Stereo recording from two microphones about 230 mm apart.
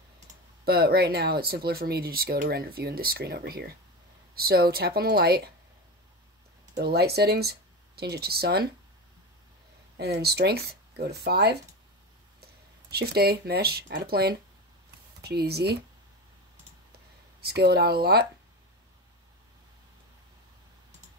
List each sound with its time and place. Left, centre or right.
0.7 s speech: right
6.8 s speech: right
9.9 s speech: right
12.9 s speech: right
17.4 s speech: right